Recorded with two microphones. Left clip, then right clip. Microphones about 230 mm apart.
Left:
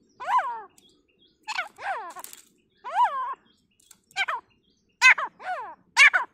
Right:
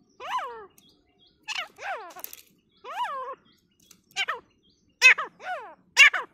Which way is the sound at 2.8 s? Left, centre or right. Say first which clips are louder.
Left 8 dB; centre.